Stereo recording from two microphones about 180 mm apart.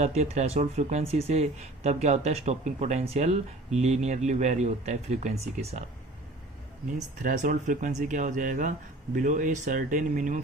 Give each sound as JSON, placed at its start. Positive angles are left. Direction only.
{"t": 0.0, "sound": "speech", "side_deg": -40}
{"t": 7.0, "sound": "speech", "side_deg": -45}